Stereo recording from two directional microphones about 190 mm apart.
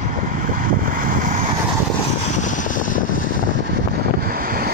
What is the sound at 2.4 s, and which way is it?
Vehicle, 40° left (ahead or behind).